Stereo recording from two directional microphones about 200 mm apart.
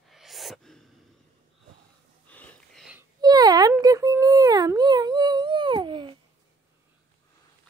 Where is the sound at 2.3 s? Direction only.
5° left (ahead or behind).